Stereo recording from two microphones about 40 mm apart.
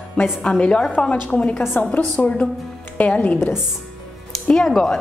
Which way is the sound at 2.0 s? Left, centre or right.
Left.